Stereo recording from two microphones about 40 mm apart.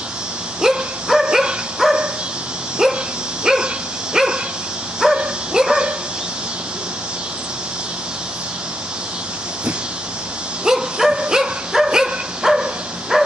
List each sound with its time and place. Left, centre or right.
0.6 s dog: centre
10.6 s dog: centre